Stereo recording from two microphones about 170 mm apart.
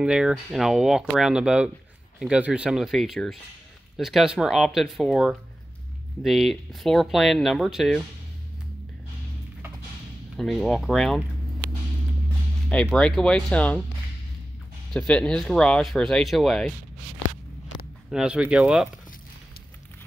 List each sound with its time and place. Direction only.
0.0 s speech: 5° right (ahead or behind)
10.3 s speech: centre (ahead or behind)
12.6 s speech: 5° left (ahead or behind)
14.9 s speech: 5° left (ahead or behind)
18.1 s speech: 5° right (ahead or behind)